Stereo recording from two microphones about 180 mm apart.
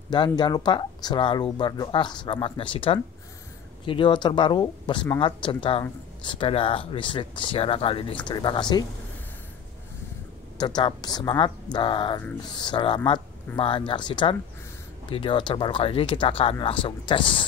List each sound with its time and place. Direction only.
0.1 s speech: 25° left (ahead or behind)
10.6 s speech: 25° left (ahead or behind)